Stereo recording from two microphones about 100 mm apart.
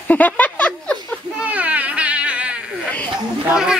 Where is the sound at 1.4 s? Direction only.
15° right (ahead or behind).